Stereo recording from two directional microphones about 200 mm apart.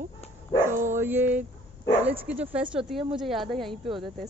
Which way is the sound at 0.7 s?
40° right (ahead or behind).